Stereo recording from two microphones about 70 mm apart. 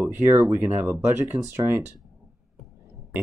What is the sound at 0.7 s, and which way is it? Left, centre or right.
Speech, right.